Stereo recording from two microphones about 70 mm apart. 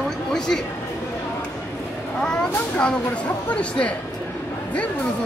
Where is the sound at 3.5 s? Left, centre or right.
Centre.